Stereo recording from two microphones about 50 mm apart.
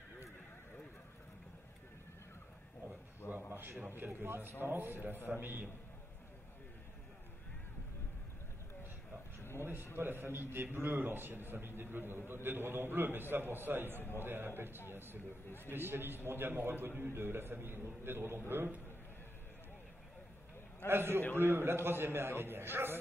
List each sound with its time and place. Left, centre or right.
3.4 s a man's voice: right
9.6 s a man's voice: right
20.9 s a man's voice: right